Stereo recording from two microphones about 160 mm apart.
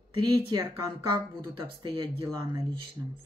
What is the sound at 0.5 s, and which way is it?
Speech, 25° right (ahead or behind).